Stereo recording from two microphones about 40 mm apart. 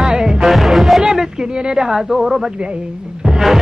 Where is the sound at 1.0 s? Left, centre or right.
Centre.